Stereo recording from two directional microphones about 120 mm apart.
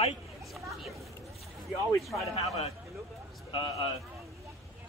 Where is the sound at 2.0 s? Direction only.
Centre (ahead or behind).